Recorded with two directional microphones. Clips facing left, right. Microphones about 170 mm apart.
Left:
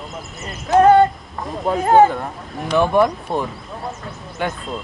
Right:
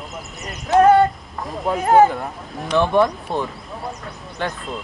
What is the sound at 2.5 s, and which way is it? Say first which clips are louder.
Speech: left 1 dB; 5° left (ahead or behind).